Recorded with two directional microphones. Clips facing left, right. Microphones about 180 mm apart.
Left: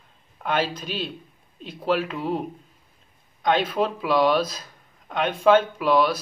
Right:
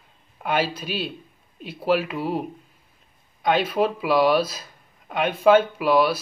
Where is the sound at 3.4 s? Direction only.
10° right (ahead or behind).